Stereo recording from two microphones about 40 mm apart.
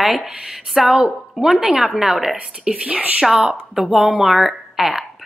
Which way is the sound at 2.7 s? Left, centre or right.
Right.